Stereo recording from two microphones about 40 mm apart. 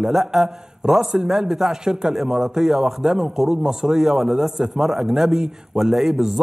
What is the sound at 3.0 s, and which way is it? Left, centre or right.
A man's voice, centre.